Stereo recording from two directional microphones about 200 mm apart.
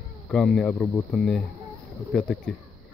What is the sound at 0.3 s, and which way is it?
Speech, centre (ahead or behind).